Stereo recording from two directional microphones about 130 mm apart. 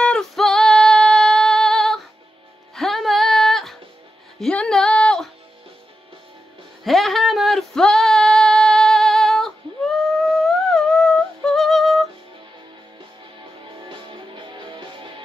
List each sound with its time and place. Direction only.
0.0 s female singing: 5° left (ahead or behind)
2.7 s music: centre (ahead or behind)
6.8 s female singing: centre (ahead or behind)
13.8 s music: 40° right (ahead or behind)